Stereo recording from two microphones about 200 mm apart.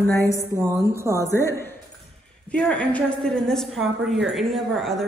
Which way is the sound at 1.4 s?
15° left (ahead or behind).